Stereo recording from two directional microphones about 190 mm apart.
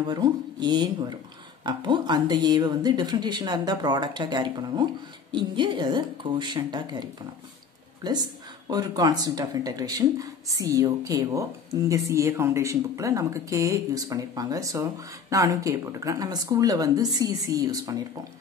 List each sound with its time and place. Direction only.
0.1 s speech: 20° right (ahead or behind)